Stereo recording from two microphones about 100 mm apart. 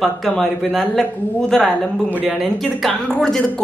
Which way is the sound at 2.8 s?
5° left (ahead or behind).